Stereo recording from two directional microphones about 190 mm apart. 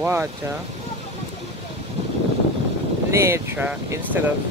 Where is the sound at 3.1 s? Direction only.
15° right (ahead or behind).